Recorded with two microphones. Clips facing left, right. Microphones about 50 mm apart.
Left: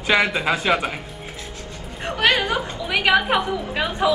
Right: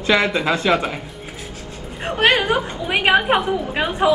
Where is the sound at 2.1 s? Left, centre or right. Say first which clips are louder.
Right 3 dB; right.